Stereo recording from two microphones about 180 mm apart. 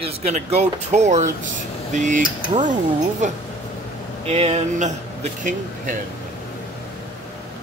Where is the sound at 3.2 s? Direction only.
40° right (ahead or behind).